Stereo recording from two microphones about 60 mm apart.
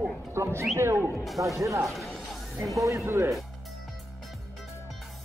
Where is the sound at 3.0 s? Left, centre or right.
Right.